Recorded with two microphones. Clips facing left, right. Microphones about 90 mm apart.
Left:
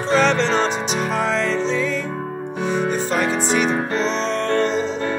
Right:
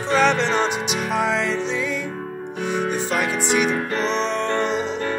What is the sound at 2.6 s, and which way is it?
Music, 60° right (ahead or behind).